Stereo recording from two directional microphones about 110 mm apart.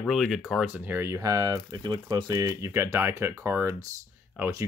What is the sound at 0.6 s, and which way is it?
Speech, 15° right (ahead or behind).